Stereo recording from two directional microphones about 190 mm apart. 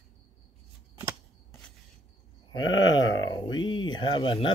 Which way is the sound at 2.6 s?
85° left.